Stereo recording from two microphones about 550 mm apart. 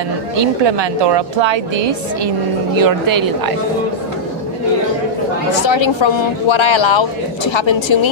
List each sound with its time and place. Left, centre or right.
0.4 s a woman's voice: right
2.8 s a woman's voice: right
5.7 s speech: left